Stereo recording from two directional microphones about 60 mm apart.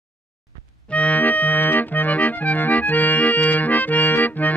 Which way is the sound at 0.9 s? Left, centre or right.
Left.